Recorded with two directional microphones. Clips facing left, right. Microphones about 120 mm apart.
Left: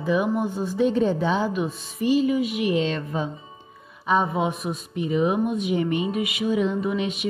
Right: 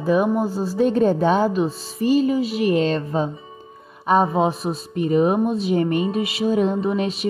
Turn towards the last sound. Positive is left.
turn(degrees=-35)  # may be behind; listen again after turning